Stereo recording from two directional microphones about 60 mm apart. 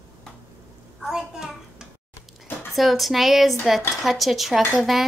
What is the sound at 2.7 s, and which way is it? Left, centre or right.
A woman's voice, centre.